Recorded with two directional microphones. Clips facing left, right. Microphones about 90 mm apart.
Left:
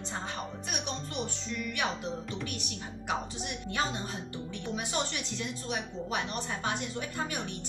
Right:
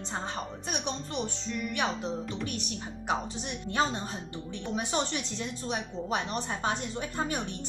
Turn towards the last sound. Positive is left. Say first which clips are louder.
# right 3 dB
turn(degrees=-30)  # may be behind; listen again after turning